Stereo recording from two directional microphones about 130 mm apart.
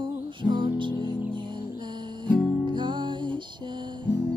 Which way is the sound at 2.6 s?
35° right (ahead or behind).